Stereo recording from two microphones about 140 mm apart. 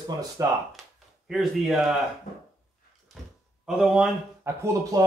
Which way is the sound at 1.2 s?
5° right (ahead or behind).